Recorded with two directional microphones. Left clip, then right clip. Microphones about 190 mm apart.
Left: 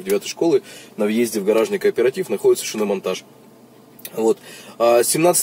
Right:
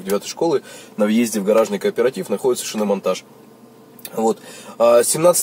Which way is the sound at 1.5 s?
Centre (ahead or behind).